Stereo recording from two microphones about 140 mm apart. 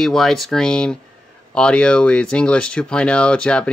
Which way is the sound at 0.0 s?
Centre (ahead or behind).